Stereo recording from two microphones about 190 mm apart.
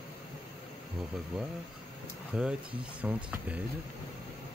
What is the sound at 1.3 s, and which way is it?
Speech, 5° right (ahead or behind).